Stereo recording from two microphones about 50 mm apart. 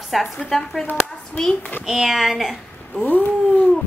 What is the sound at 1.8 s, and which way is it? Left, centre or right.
A child's voice, centre.